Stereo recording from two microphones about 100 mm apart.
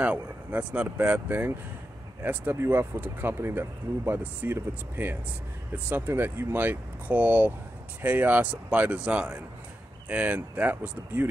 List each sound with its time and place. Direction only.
0.0 s speech: 15° right (ahead or behind)